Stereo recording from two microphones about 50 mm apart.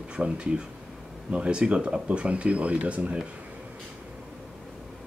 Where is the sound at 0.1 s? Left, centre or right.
Right.